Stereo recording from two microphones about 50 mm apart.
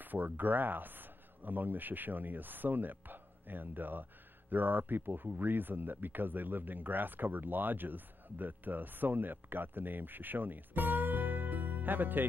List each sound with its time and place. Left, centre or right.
0.0 s speech: right